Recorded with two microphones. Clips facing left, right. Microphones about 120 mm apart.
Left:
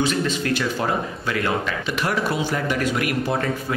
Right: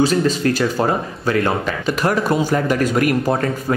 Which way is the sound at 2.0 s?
45° right (ahead or behind).